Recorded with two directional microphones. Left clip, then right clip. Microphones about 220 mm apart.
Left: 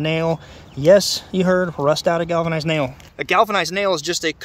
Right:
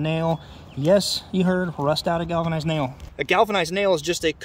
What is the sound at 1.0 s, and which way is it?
Speech, 15° left (ahead or behind).